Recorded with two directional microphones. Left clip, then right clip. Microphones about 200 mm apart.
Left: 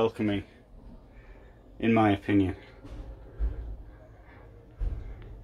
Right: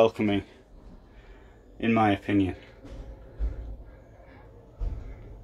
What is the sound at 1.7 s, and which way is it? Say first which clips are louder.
Speech: right 1 dB; centre (ahead or behind).